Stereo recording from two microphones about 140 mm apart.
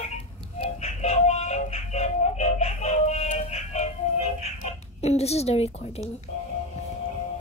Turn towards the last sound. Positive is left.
turn(degrees=50)  # may be behind; listen again after turning